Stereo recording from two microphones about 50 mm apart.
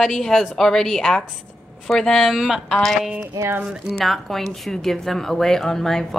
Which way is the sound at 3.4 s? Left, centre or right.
Right.